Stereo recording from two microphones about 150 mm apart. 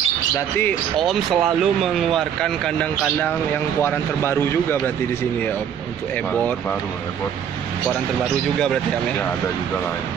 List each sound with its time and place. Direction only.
0.6 s speech: 10° left (ahead or behind)
1.0 s speech: centre (ahead or behind); by 4.9 s 15° left (ahead or behind)